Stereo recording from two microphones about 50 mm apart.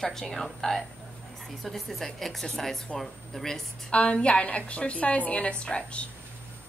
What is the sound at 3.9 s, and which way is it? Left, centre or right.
A woman's voice, left.